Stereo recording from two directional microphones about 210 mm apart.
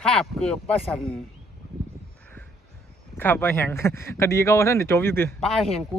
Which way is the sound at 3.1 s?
10° left (ahead or behind).